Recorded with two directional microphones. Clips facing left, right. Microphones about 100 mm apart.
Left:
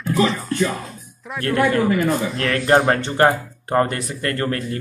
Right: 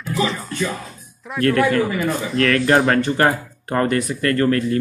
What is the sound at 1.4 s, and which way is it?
Speech, 25° left (ahead or behind).